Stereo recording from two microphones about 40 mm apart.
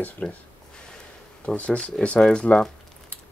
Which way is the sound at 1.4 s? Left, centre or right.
Left.